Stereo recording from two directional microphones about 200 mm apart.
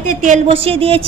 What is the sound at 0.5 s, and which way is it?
Speech, 30° right (ahead or behind).